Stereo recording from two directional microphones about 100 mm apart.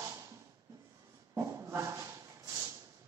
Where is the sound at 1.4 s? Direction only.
30° right (ahead or behind).